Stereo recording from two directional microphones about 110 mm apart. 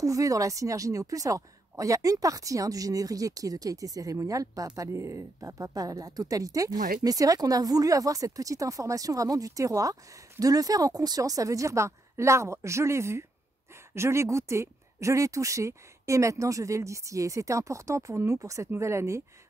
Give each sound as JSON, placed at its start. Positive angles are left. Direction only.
{"t": 0.0, "sound": "a woman's voice", "side_deg": -30}